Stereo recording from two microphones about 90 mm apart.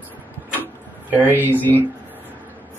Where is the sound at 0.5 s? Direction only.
20° right (ahead or behind).